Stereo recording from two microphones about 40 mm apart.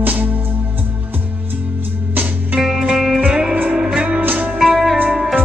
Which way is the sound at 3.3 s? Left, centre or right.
Right.